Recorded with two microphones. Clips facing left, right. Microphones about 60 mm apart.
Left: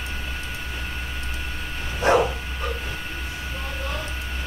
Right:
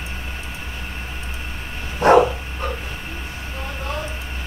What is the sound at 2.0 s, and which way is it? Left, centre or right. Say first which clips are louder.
Dog: right 5 dB; right.